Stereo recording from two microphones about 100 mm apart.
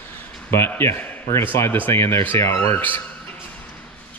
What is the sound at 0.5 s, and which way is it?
Speech, 25° left (ahead or behind).